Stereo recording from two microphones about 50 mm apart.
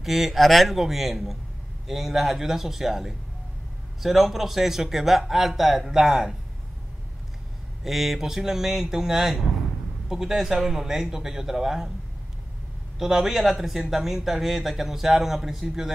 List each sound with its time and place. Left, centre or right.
0.0 s speech: centre
7.8 s speech: centre
13.0 s speech: centre